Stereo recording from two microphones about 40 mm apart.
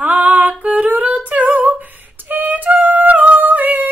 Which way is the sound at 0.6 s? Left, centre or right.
Right.